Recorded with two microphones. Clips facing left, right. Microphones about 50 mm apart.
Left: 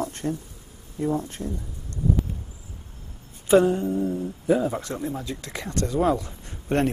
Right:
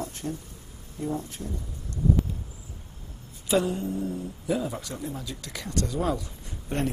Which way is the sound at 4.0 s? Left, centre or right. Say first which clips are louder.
Left 5 dB; centre.